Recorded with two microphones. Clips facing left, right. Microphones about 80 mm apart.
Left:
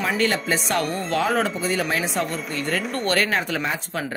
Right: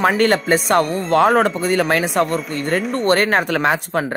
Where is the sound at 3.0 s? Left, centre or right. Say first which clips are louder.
Right 7 dB; right.